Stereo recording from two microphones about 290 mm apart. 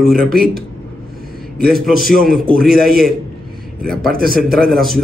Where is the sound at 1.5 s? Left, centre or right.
Right.